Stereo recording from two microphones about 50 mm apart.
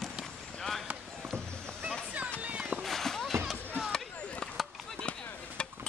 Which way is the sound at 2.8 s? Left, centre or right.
Centre.